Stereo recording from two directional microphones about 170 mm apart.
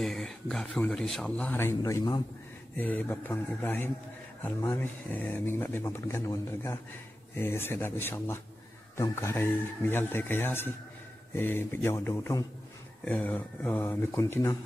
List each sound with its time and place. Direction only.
0.0 s speech: centre (ahead or behind); by 2.2 s 20° left (ahead or behind)
2.8 s speech: 10° left (ahead or behind)